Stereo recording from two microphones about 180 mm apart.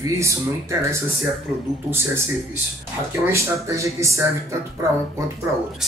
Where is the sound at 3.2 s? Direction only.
15° right (ahead or behind).